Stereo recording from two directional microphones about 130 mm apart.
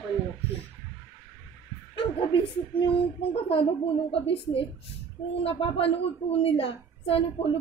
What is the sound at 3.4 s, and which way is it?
A woman's voice, 45° left (ahead or behind).